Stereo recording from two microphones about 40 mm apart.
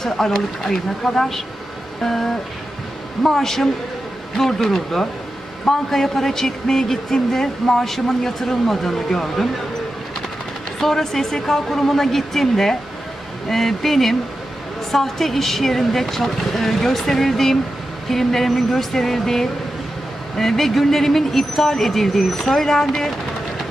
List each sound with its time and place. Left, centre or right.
0.0 s speech: centre
10.8 s speech: centre